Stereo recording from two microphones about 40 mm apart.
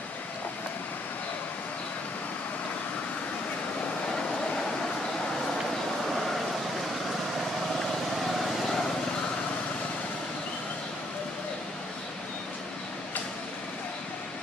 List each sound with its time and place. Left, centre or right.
6.1 s vehicle: centre
8.2 s vehicle: centre